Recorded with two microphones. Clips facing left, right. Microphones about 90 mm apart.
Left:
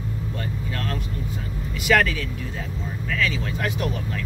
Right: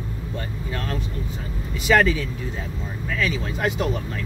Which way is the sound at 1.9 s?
20° right (ahead or behind).